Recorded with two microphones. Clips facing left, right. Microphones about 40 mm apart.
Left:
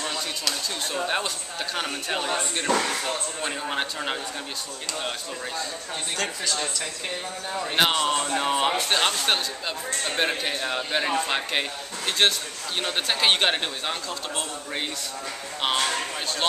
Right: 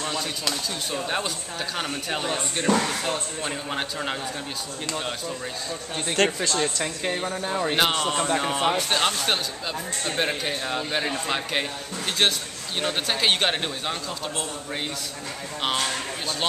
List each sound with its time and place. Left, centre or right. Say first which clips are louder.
0.9 s speech: left 1 dB; centre
6.1 s speech: right 7 dB; right
7.7 s speech: left 3 dB; centre
15.6 s speech: left 1 dB; centre